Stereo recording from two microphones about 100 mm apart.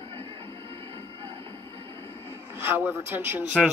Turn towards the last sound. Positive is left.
turn(degrees=-5)  # may be behind; listen again after turning